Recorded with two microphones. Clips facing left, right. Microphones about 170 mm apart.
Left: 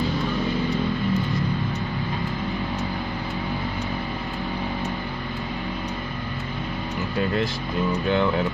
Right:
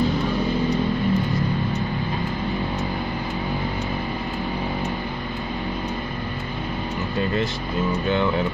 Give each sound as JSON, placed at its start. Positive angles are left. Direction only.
{"t": 8.1, "sound": "speech", "side_deg": 0}